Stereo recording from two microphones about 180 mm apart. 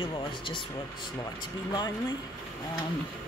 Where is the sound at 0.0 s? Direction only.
25° left (ahead or behind).